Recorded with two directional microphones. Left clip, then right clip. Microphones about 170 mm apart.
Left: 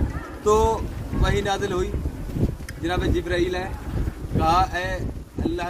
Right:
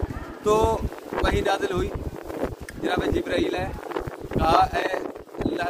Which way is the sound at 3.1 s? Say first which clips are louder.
Left 1 dB; 30° right (ahead or behind).